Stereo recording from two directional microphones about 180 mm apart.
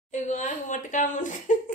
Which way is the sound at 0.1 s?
40° left (ahead or behind).